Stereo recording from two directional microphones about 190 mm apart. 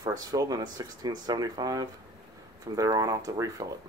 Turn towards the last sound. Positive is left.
turn(degrees=-20)  # may be behind; listen again after turning